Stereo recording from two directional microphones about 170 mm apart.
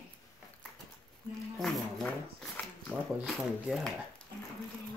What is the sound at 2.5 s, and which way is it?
Speech, centre (ahead or behind).